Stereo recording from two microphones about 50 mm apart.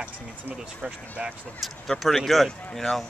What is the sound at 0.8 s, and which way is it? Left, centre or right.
Speech, right.